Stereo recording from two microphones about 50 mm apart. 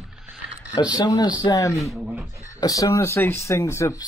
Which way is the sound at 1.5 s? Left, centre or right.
Left.